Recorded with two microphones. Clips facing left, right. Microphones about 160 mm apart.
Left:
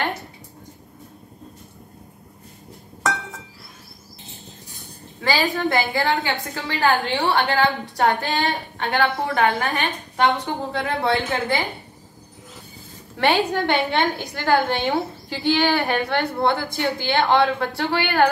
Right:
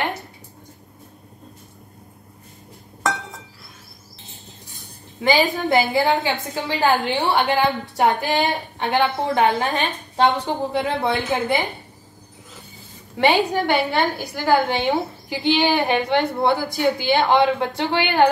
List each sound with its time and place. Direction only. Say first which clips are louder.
5.2 s a woman's voice: right 3 dB; 20° right (ahead or behind)
13.2 s a woman's voice: right 2 dB; 15° right (ahead or behind)